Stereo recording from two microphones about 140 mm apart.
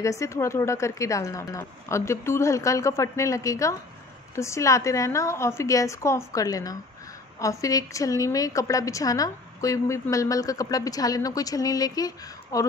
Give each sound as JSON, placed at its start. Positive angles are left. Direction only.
{"t": 0.0, "sound": "a woman's voice", "side_deg": 20}